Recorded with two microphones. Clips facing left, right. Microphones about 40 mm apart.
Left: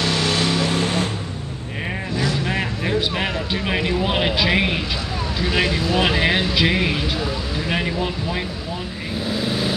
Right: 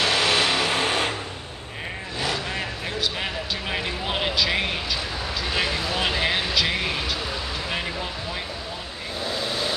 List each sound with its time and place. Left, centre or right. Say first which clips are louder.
0.0 s vehicle: even; right
0.7 s a sound: left 1 dB; right
2.4 s vehicle: left 6 dB; centre
5.4 s speech: left 5 dB; centre
9.2 s vehicle: left 4 dB; centre